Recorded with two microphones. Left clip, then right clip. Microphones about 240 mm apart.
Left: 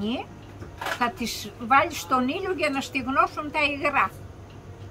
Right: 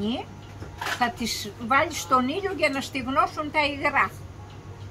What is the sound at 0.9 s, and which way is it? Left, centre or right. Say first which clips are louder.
A woman's voice: right 1 dB; centre.